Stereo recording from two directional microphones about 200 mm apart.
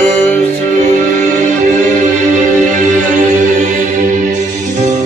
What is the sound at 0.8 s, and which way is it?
Music, 40° right (ahead or behind).